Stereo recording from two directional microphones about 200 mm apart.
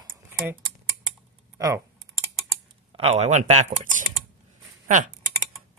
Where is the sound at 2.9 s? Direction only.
30° right (ahead or behind).